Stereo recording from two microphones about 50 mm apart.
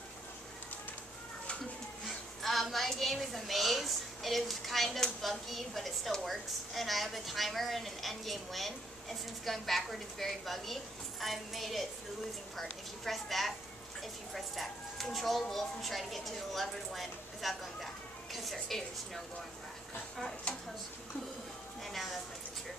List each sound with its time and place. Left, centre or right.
2.0 s a woman's voice: centre
20.5 s speech: left
21.8 s a woman's voice: centre